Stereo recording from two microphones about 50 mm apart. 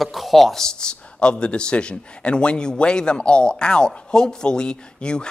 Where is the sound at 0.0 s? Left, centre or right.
Centre.